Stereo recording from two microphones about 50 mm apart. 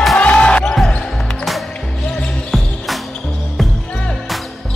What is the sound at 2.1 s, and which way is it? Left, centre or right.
Basketball bounce, centre.